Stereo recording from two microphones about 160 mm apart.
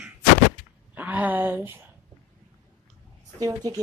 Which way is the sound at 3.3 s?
20° right (ahead or behind).